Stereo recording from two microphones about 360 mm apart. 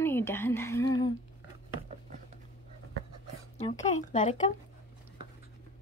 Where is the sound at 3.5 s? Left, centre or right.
Centre.